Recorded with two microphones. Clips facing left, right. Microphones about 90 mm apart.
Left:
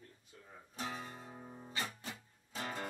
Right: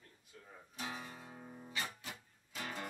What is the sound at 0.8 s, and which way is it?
Guitar, 35° left (ahead or behind).